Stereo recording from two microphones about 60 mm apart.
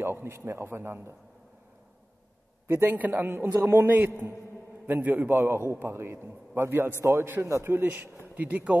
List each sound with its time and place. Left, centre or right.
0.0 s a sound: right
0.5 s a man's voice: right
2.7 s a man's voice: right
8.4 s speech: right